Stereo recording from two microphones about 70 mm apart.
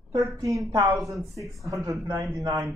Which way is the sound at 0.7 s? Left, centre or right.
Right.